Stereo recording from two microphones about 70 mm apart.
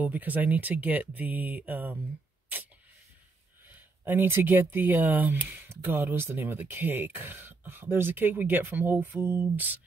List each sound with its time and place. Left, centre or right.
0.0 s speech: right
3.6 s speech: right